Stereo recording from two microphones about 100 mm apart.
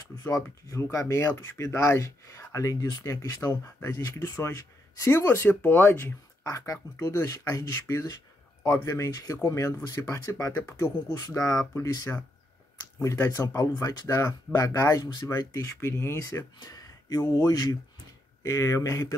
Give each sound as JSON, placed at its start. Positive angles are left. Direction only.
{"t": 0.2, "sound": "speech", "side_deg": 30}
{"t": 11.3, "sound": "speech", "side_deg": 35}
{"t": 15.8, "sound": "speech", "side_deg": 25}
{"t": 16.6, "sound": "speech", "side_deg": 40}